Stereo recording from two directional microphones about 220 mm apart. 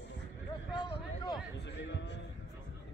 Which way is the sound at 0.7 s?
20° left (ahead or behind).